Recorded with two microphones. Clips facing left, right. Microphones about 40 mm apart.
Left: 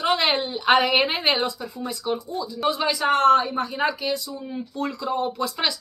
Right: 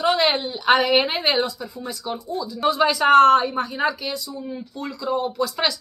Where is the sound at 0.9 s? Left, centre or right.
Centre.